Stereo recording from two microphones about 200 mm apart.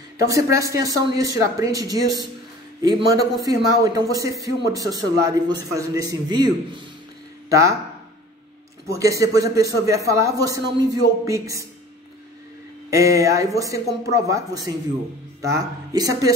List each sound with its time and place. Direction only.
0.2 s a man's voice: 15° right (ahead or behind)
8.8 s a man's voice: 15° right (ahead or behind)
12.9 s a man's voice: 15° right (ahead or behind)